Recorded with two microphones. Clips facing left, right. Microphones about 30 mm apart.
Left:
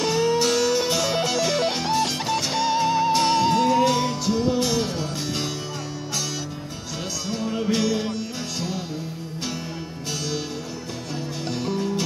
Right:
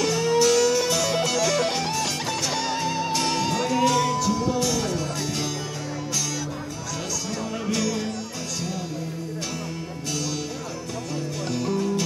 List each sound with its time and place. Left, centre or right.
0.0 s music: centre
7.2 s music: left
11.4 s music: left